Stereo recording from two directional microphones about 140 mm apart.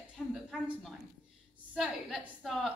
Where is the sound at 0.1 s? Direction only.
Centre (ahead or behind).